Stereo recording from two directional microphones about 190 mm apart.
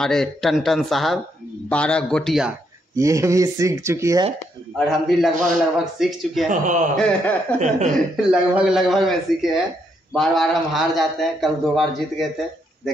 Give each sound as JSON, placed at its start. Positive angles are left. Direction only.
{"t": 0.0, "sound": "a man's voice", "side_deg": 0}
{"t": 3.0, "sound": "speech", "side_deg": -15}
{"t": 4.7, "sound": "a man's voice", "side_deg": 0}
{"t": 6.5, "sound": "a man's voice", "side_deg": -40}
{"t": 7.0, "sound": "a man's voice", "side_deg": 5}
{"t": 7.5, "sound": "a man's voice", "side_deg": -40}
{"t": 8.3, "sound": "a man's voice", "side_deg": -5}